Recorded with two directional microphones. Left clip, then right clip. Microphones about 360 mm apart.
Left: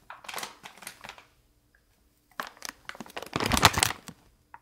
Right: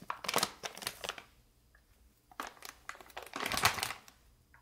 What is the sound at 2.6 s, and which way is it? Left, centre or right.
Crumpling, left.